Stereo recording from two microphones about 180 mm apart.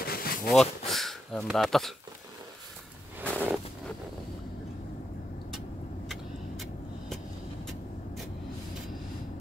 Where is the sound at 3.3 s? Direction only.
10° right (ahead or behind).